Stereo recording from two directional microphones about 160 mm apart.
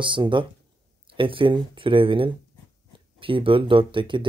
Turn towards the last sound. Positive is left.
turn(degrees=-30)  # may be behind; listen again after turning